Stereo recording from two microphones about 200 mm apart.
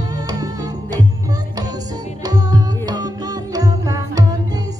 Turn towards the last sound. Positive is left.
turn(degrees=-20)  # may be behind; listen again after turning